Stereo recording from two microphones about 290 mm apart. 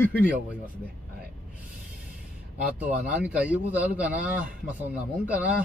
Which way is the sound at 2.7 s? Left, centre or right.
Centre.